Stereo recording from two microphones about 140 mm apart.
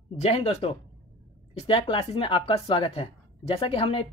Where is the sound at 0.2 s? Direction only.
45° left (ahead or behind).